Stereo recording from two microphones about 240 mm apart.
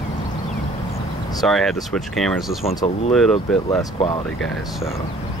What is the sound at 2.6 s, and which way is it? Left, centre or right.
Speech, left.